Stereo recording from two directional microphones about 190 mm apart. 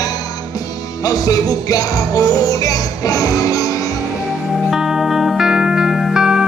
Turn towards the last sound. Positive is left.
turn(degrees=-5)  # may be behind; listen again after turning